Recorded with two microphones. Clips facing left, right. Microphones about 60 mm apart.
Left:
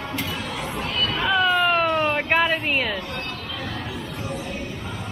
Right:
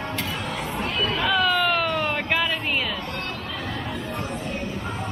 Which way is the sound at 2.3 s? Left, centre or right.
Left.